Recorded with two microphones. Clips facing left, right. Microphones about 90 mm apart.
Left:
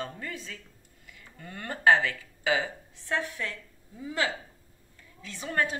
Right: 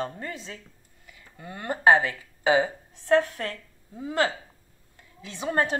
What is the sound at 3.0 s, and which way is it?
A woman's voice, 45° right (ahead or behind).